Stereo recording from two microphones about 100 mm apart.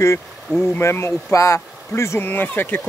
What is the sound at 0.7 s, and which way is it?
Speech, 25° left (ahead or behind).